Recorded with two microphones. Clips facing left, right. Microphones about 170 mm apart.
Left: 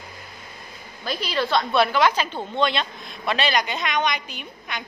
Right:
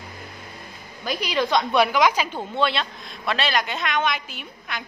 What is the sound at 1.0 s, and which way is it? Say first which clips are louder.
A woman's voice: right 1 dB; 15° right (ahead or behind).